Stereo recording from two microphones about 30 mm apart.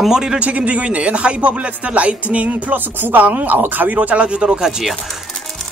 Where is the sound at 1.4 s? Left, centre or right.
Right.